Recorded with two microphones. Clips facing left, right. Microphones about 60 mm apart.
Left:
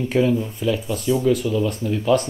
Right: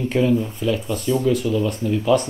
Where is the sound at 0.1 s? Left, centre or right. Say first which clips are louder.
Even; centre.